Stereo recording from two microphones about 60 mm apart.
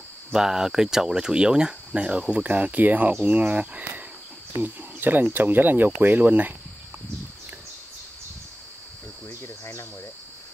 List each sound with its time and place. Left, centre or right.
0.3 s speech: centre; by 6.5 s right
9.3 s insect: left